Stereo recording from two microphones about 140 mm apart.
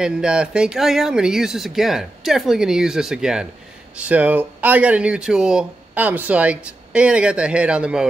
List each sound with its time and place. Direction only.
0.0 s speech: 5° right (ahead or behind)